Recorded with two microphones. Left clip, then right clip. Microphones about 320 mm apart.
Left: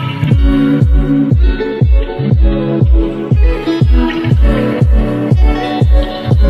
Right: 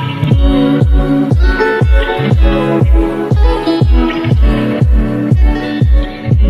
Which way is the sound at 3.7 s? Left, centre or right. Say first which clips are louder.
Right 1 dB; centre.